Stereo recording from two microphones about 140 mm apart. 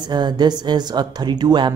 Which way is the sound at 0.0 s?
30° right (ahead or behind).